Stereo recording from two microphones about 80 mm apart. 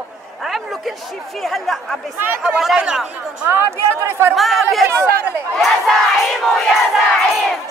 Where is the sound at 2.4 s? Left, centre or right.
Centre.